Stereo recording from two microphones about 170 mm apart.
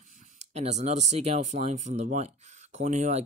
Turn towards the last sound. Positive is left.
turn(degrees=-45)  # may be behind; listen again after turning